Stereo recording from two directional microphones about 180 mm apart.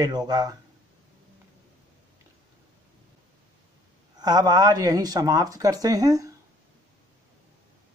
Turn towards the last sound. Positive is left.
turn(degrees=-20)  # may be behind; listen again after turning